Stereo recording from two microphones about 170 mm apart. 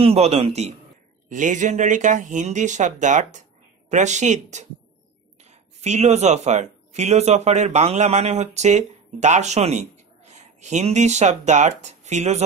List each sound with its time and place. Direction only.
0.0 s a man's voice: 35° right (ahead or behind)